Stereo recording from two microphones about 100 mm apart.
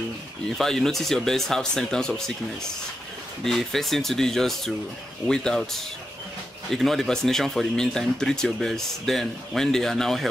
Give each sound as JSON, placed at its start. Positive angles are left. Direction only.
{"t": 0.6, "sound": "speech", "side_deg": 5}
{"t": 3.4, "sound": "speech", "side_deg": 5}